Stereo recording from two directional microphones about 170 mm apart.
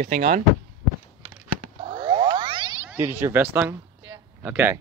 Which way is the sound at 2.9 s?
10° right (ahead or behind).